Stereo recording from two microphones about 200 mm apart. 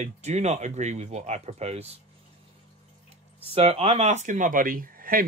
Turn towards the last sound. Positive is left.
turn(degrees=-45)  # may be behind; listen again after turning